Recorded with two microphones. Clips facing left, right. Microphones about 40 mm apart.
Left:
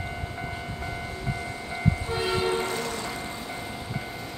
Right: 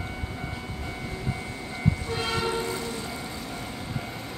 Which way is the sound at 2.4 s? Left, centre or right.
Left.